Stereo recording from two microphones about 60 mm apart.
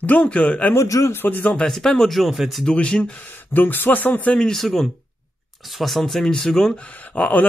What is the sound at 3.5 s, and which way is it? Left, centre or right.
Speech, left.